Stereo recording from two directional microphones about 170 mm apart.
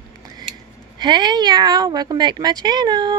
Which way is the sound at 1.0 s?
25° right (ahead or behind).